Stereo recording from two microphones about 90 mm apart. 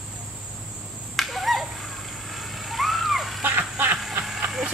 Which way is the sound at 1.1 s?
Centre (ahead or behind).